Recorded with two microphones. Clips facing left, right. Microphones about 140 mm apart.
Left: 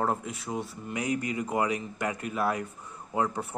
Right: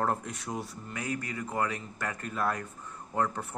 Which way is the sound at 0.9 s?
15° left (ahead or behind).